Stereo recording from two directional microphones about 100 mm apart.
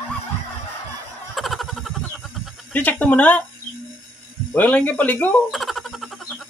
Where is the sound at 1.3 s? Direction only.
Centre (ahead or behind).